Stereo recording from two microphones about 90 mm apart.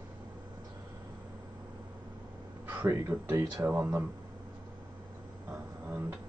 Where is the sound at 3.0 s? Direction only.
30° right (ahead or behind).